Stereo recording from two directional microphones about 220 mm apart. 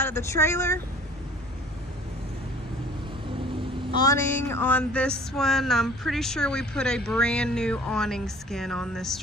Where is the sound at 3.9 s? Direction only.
15° left (ahead or behind).